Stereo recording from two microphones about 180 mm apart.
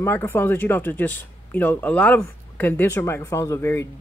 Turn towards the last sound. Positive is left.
turn(degrees=15)  # may be behind; listen again after turning